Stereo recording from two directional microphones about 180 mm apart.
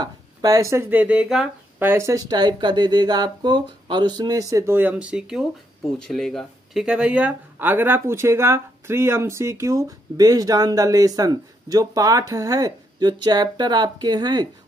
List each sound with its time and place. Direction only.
0.0 s speech: 20° right (ahead or behind)